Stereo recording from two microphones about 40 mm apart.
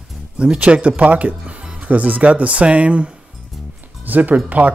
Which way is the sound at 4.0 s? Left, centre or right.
Right.